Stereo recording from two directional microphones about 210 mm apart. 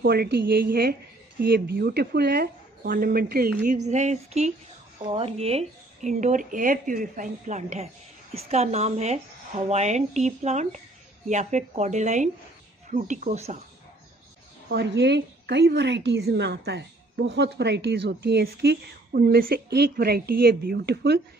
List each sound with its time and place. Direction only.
0.0 s a woman's voice: 50° right (ahead or behind)
14.7 s a woman's voice: 55° right (ahead or behind)